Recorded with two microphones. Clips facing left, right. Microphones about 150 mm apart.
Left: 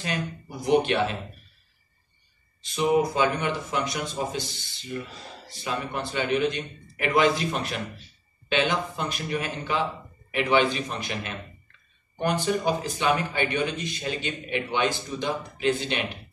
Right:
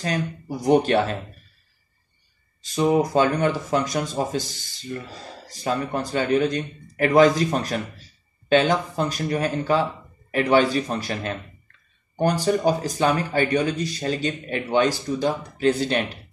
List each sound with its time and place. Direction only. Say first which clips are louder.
0.0 s a man's voice: right 4 dB; 40° right (ahead or behind)
2.6 s a man's voice: right 3 dB; 45° right (ahead or behind)